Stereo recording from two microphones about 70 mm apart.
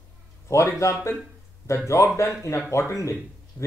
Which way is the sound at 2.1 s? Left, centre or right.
Left.